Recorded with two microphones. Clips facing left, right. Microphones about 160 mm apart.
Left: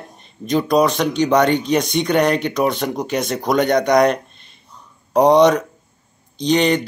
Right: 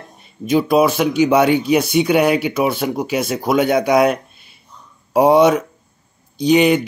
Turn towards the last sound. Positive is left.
turn(degrees=-10)  # may be behind; listen again after turning